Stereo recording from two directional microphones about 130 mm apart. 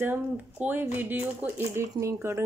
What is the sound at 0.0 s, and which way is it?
Speech, 15° right (ahead or behind).